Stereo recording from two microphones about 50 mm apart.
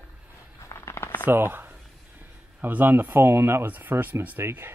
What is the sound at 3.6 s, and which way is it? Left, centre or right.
Speech, right.